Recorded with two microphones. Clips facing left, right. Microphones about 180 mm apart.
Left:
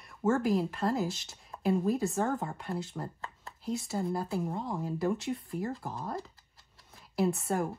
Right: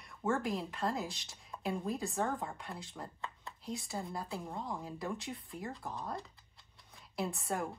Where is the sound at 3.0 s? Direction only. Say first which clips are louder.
Left 4 dB; 40° left (ahead or behind).